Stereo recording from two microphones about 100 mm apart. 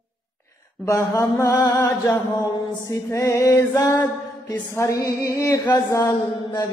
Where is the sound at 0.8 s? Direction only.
40° left (ahead or behind).